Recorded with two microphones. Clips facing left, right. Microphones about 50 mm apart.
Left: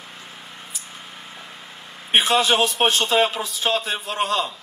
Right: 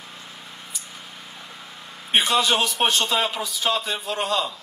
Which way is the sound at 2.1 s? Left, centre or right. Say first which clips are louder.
Left 2 dB; left.